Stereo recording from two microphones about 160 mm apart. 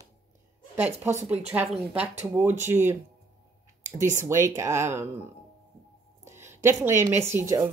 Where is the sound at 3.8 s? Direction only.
50° right (ahead or behind).